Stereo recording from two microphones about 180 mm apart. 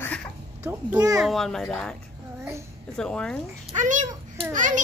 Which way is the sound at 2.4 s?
15° right (ahead or behind).